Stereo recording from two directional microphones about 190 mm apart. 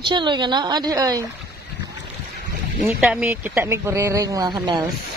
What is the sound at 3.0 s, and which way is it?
Speech, 5° right (ahead or behind).